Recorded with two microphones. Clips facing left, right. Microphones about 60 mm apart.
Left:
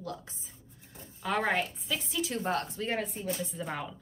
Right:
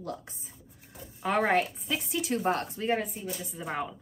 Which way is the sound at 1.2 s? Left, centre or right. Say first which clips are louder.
Right 4 dB; right.